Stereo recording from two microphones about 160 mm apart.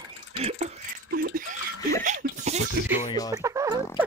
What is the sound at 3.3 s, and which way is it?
Music, 20° right (ahead or behind).